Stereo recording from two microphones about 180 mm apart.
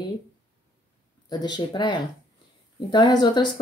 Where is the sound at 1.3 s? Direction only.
25° left (ahead or behind).